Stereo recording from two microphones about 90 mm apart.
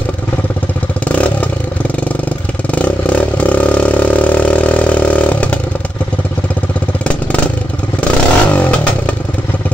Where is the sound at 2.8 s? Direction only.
15° left (ahead or behind).